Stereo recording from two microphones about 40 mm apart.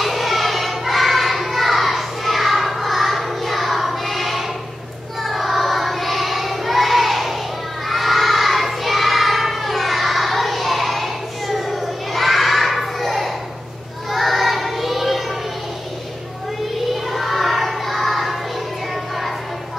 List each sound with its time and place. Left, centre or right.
0.0 s music: centre
5.2 s child singing: centre
17.1 s music: centre